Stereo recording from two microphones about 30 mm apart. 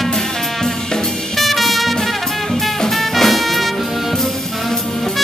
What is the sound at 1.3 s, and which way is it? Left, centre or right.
Music, centre.